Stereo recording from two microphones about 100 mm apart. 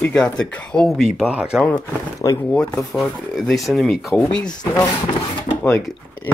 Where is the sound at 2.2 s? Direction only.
40° left (ahead or behind).